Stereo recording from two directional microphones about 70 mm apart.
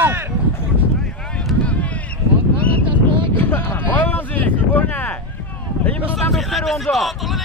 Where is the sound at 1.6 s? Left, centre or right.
Centre.